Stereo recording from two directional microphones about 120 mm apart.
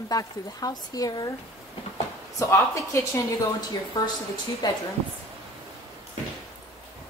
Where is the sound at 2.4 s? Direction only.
25° left (ahead or behind).